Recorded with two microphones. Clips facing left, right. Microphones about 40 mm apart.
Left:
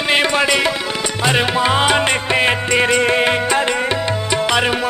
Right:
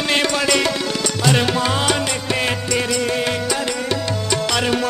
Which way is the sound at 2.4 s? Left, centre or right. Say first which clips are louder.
Left 5 dB; left.